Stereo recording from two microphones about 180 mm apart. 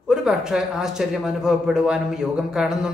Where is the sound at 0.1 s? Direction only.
5° right (ahead or behind).